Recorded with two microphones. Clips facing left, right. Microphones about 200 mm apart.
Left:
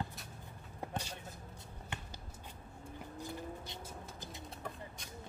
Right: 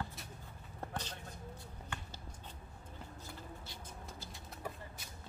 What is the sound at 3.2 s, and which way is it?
Vehicle, 20° left (ahead or behind).